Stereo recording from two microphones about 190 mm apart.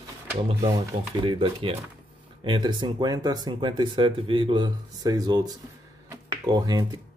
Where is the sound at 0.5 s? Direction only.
25° right (ahead or behind).